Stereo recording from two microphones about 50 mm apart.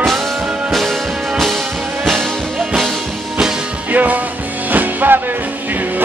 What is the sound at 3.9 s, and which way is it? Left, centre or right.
Music, right.